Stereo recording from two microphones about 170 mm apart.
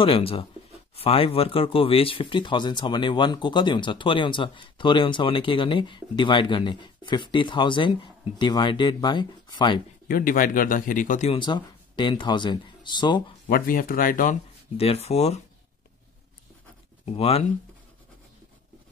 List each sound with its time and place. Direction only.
0.0 s speech: 35° left (ahead or behind)
10.0 s speech: 55° left (ahead or behind)
11.3 s speech: 25° left (ahead or behind)
13.5 s speech: 55° left (ahead or behind)
14.8 s speech: 35° left (ahead or behind)
17.0 s speech: 35° left (ahead or behind)